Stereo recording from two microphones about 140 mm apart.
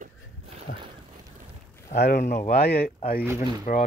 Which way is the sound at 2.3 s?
80° left.